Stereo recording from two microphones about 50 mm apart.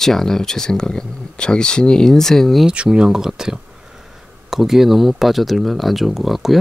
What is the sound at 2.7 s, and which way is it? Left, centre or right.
Speech, centre.